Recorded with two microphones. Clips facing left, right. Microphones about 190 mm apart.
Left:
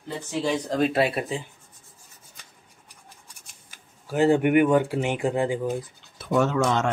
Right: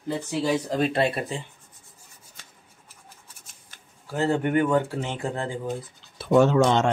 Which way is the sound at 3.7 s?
15° left (ahead or behind).